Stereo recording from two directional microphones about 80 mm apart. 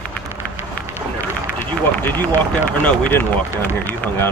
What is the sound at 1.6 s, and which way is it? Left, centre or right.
Speech, left.